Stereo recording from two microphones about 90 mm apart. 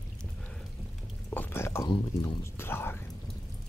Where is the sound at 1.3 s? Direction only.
25° left (ahead or behind).